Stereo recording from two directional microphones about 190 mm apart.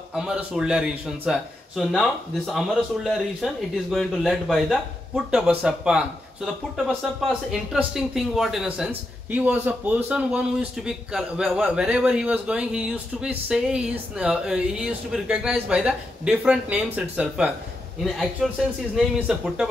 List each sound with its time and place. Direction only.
0.1 s speech: 5° right (ahead or behind)